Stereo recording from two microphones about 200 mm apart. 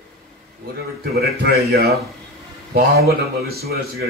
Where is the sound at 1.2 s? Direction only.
50° right (ahead or behind).